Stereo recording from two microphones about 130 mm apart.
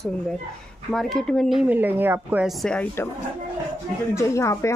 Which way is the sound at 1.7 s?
15° right (ahead or behind).